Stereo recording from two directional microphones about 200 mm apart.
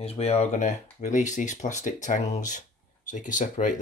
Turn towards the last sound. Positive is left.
turn(degrees=40)  # may be behind; listen again after turning